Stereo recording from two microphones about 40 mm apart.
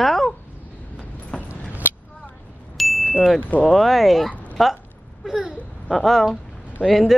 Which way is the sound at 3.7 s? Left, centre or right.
Centre.